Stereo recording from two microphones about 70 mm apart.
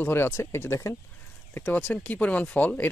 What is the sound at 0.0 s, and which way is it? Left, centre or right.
Speech, left.